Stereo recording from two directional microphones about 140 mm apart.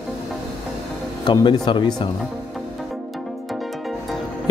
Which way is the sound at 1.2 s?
30° left (ahead or behind).